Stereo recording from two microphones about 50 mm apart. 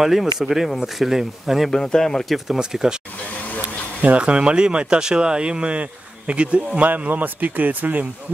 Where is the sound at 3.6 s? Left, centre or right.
Right.